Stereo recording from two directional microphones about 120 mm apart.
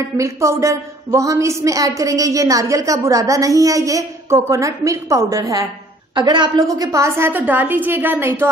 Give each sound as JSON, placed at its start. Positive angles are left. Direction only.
{"t": 0.2, "sound": "a woman's voice", "side_deg": -25}
{"t": 6.1, "sound": "a woman's voice", "side_deg": -40}